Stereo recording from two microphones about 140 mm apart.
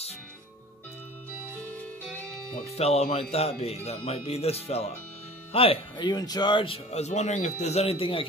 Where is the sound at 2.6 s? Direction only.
50° left (ahead or behind).